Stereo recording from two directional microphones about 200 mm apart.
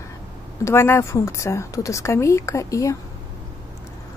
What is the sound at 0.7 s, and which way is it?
Speech, 15° left (ahead or behind).